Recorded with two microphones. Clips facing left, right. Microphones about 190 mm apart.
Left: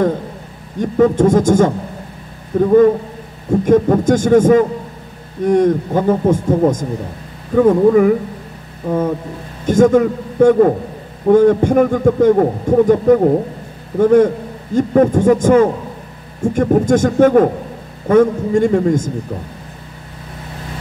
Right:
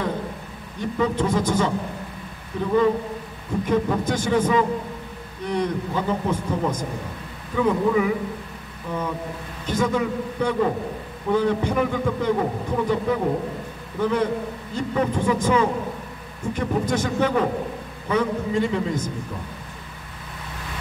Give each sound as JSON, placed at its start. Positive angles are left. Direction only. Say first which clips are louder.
{"t": 0.7, "sound": "a man's voice", "louder": "left 10 dB", "side_deg": 50}